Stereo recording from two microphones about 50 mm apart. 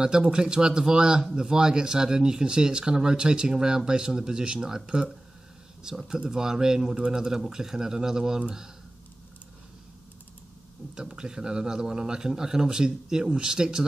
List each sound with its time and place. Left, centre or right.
0.0 s a man's voice: centre
11.0 s a man's voice: centre